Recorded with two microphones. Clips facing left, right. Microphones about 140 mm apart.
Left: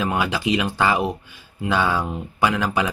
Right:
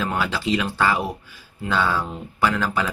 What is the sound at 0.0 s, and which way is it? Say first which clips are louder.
Speech: left 2 dB; 15° left (ahead or behind).